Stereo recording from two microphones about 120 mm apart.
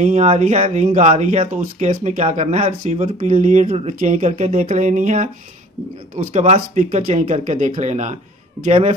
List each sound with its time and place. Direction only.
0.0 s speech: 75° right (ahead or behind)
6.1 s speech: 65° right (ahead or behind)